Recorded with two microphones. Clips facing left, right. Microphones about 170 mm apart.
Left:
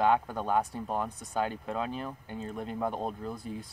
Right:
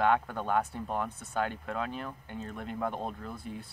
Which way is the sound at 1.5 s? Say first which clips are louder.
Left 2 dB; 30° left (ahead or behind).